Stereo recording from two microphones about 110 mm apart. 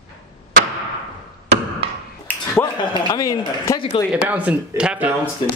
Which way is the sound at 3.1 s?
30° left (ahead or behind).